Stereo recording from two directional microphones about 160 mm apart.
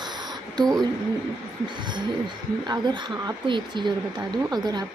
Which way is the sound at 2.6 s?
25° right (ahead or behind).